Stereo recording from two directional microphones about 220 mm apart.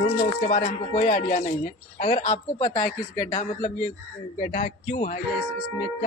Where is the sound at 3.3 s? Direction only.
30° left (ahead or behind).